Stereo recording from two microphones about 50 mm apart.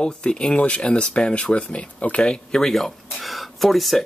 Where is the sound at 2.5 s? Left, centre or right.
Centre.